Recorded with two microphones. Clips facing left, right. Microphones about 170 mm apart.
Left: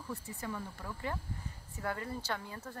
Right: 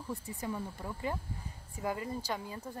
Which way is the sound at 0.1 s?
20° right (ahead or behind).